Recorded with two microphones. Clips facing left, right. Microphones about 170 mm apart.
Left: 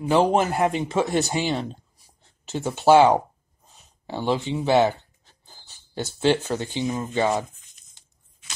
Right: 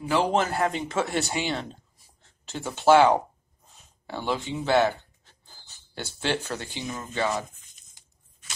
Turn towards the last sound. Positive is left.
turn(degrees=20)  # may be behind; listen again after turning